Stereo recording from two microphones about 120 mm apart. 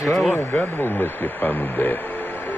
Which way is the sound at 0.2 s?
10° left (ahead or behind).